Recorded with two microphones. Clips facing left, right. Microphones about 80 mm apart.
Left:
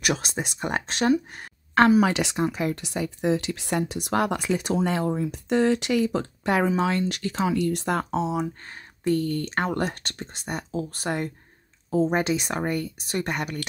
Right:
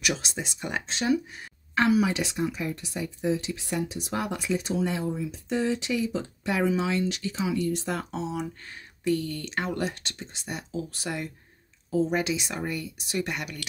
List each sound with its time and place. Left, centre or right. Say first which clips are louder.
0.0 s speech: left 4 dB; left
1.3 s a sound: left 6 dB; left
2.0 s speech: left 4 dB; left